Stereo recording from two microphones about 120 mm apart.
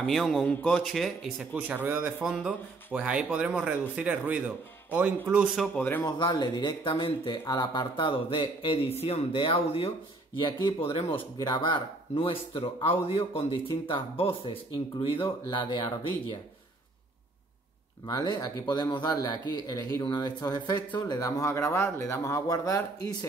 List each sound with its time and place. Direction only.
0.0 s speech: centre (ahead or behind); by 2.1 s 15° right (ahead or behind)
2.2 s speech: 5° right (ahead or behind)
5.8 s speech: 15° left (ahead or behind)
6.0 s speech: 35° left (ahead or behind)
11.3 s speech: 35° left (ahead or behind)
18.0 s speech: 35° left (ahead or behind)